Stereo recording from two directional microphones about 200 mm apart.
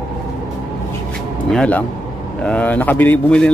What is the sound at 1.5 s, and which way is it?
A man's voice, 5° left (ahead or behind).